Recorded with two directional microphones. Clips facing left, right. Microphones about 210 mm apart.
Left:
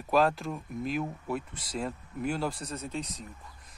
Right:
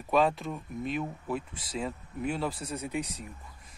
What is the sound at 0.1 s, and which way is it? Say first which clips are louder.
Speech: even; centre (ahead or behind).